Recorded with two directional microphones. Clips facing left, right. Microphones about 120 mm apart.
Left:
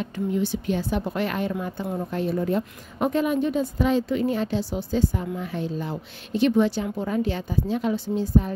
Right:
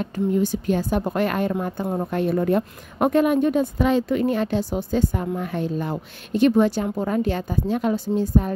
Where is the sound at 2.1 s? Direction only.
60° right (ahead or behind).